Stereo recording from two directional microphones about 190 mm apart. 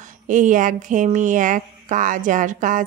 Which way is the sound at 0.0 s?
40° right (ahead or behind).